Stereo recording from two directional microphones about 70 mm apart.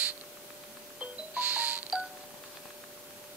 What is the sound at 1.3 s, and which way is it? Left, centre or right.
Music, right.